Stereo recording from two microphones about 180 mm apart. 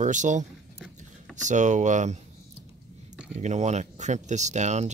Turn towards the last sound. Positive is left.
turn(degrees=-40)  # may be behind; listen again after turning